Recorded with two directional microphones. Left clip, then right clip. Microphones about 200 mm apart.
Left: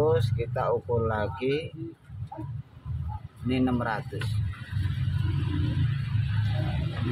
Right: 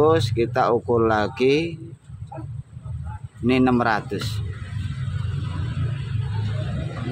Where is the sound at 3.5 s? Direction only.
50° right (ahead or behind).